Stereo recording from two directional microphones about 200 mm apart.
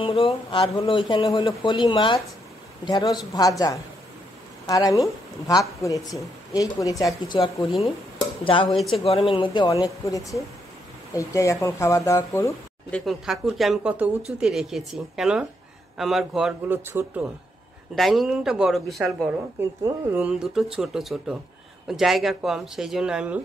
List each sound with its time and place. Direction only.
0.0 s a man's voice: 25° left (ahead or behind)
8.6 s speech: centre (ahead or behind)
9.0 s a man's voice: 30° left (ahead or behind); by 13.0 s 10° left (ahead or behind)
13.0 s speech: centre (ahead or behind)
17.9 s speech: centre (ahead or behind)
19.8 s speech: 10° right (ahead or behind)